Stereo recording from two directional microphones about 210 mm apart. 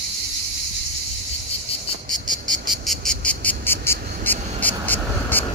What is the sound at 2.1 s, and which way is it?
Cricket, 40° right (ahead or behind).